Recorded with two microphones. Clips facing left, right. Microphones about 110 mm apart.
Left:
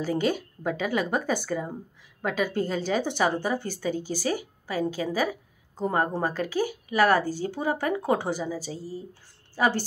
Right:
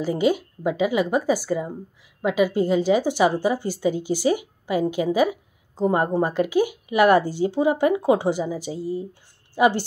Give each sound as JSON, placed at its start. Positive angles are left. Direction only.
{"t": 0.0, "sound": "speech", "side_deg": -10}